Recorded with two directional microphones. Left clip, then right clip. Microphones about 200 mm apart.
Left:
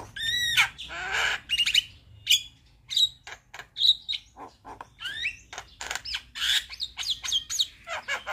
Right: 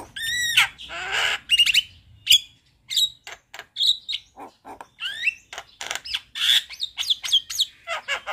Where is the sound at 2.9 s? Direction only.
20° right (ahead or behind).